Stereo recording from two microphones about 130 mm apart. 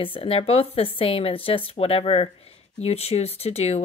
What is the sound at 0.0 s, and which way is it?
Speech, 45° left (ahead or behind).